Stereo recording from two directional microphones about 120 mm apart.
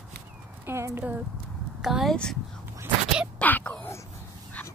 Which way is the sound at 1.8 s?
5° right (ahead or behind).